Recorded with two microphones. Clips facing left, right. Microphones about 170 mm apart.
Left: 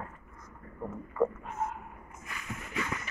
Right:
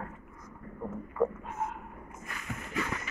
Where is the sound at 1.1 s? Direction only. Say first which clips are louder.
Left 1 dB; 5° right (ahead or behind).